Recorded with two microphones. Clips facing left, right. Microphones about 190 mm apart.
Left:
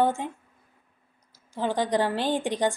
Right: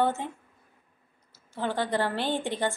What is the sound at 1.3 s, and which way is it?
A woman's voice, 15° left (ahead or behind).